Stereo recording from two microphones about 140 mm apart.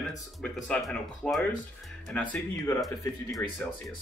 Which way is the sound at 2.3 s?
20° left (ahead or behind).